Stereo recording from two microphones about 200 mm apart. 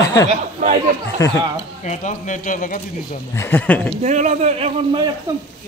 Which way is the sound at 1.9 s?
40° left (ahead or behind).